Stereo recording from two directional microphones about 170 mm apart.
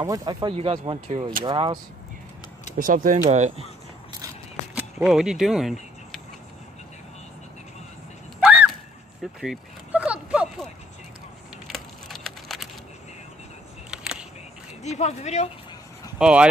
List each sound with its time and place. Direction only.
0.0 s speech: 25° right (ahead or behind)
0.6 s speech: 35° right (ahead or behind)
2.8 s speech: 55° right (ahead or behind)
4.7 s keys jangling: 5° right (ahead or behind)
9.2 s a sound: 5° right (ahead or behind)
13.8 s a sound: 5° right (ahead or behind)
14.8 s speech: 40° left (ahead or behind)
16.2 s speech: 5° right (ahead or behind)